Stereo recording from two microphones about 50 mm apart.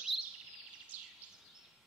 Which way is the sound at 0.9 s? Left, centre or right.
Right.